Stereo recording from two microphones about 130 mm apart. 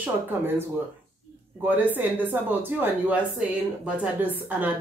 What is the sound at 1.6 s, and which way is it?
Speech, 15° right (ahead or behind).